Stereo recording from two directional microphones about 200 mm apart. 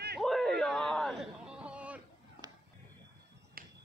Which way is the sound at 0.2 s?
Centre (ahead or behind).